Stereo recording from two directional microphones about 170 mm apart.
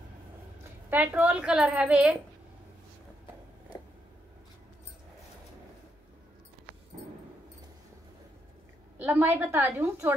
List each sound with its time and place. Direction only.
0.8 s a woman's voice: 10° right (ahead or behind)
8.9 s a woman's voice: 10° right (ahead or behind)